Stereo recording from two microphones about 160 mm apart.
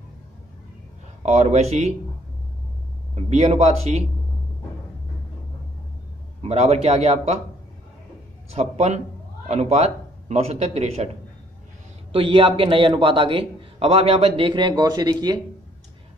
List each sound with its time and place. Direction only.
1.2 s speech: 45° right (ahead or behind)
3.2 s speech: 45° right (ahead or behind)
6.4 s a man's voice: 40° right (ahead or behind)
8.5 s speech: 45° right (ahead or behind)
12.1 s a man's voice: 35° right (ahead or behind)